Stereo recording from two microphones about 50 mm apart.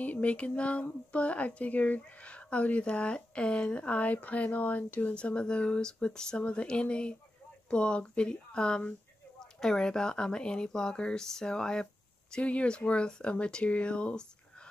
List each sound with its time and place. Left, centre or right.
0.0 s speech: left; by 12.4 s centre
12.4 s speech: left